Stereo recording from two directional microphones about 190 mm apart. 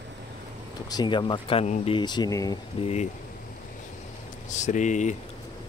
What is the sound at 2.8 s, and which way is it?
Speech, 35° left (ahead or behind).